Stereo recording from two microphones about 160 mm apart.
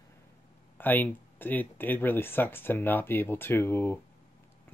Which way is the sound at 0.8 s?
10° left (ahead or behind).